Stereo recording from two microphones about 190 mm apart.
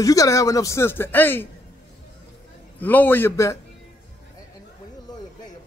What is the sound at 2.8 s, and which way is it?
Speech, 10° left (ahead or behind).